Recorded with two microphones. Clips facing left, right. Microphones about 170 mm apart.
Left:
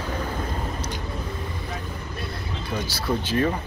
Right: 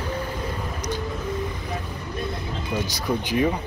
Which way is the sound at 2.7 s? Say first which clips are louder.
Right 1 dB; 15° right (ahead or behind).